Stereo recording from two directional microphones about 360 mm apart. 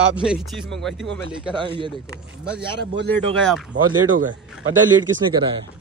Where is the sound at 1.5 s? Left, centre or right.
Centre.